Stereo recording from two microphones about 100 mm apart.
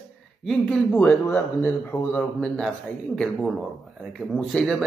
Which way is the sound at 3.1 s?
5° left (ahead or behind).